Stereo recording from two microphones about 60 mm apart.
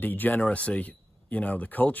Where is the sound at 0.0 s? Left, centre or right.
Left.